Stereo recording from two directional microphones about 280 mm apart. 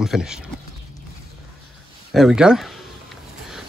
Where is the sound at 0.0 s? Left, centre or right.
Centre.